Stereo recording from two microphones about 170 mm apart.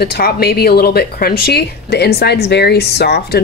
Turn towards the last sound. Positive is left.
turn(degrees=75)  # may be behind; listen again after turning